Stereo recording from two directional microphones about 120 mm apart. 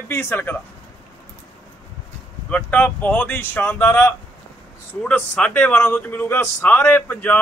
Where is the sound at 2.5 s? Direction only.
10° left (ahead or behind).